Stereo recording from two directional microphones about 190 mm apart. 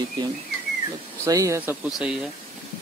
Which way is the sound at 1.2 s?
15° right (ahead or behind).